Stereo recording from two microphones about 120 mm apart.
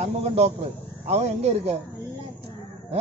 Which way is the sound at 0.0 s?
60° right (ahead or behind).